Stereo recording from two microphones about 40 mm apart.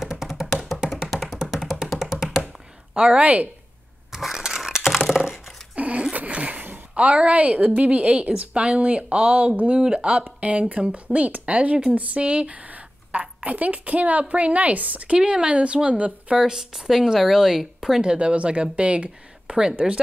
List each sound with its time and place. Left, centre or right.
0.0 s music: centre
2.4 s a sound: right
4.1 s a sound: centre
5.8 s zipper: right
6.1 s a sound: right
7.0 s a woman's voice: right
15.1 s speech: right
16.3 s speech: centre
18.0 s speech: right
19.8 s speech: centre